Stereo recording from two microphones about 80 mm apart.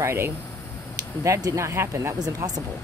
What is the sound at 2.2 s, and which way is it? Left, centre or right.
Speech, right.